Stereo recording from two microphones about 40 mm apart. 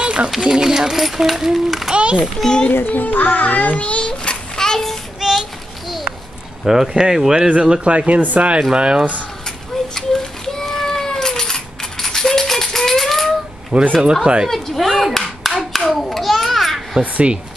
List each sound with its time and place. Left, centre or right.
0.0 s a sound: right
0.4 s speech: centre
1.9 s a sound: right
2.4 s a child's voice: left
2.9 s music: left; by 4.9 s centre
5.2 s child singing: centre
6.6 s speech: centre
7.3 s speech: right
8.7 s speech: right
9.9 s cat: centre
13.7 s speech: right
14.5 s a sound: centre
15.1 s clapping: centre
15.9 s babbling: centre